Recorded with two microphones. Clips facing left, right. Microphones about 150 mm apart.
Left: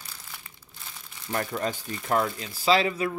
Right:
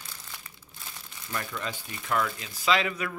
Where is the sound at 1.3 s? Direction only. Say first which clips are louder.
Left 6 dB; 40° left (ahead or behind).